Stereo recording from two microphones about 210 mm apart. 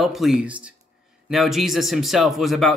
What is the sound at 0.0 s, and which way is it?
Speech, centre (ahead or behind).